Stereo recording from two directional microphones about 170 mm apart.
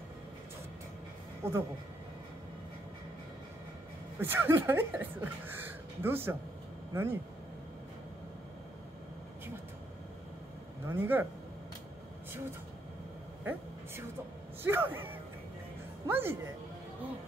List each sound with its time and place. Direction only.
1.4 s speech: 15° right (ahead or behind)
4.2 s speech: 15° right (ahead or behind)
10.9 s speech: 10° right (ahead or behind)
13.4 s a sound: 10° right (ahead or behind)
14.6 s speech: 10° right (ahead or behind)
16.1 s speech: 15° right (ahead or behind)